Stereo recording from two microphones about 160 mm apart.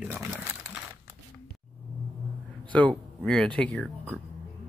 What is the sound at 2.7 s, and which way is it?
Speech, 10° left (ahead or behind).